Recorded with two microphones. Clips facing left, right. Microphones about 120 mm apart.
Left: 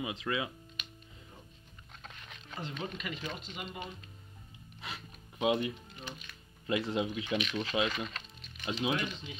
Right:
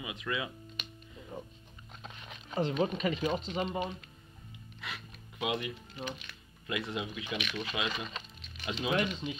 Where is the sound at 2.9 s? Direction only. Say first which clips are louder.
Right 9 dB; 40° right (ahead or behind).